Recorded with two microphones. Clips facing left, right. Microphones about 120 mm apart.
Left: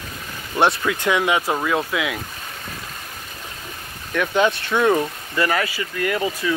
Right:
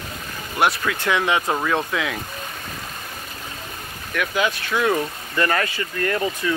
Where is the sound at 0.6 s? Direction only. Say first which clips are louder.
Left 2 dB; 20° left (ahead or behind).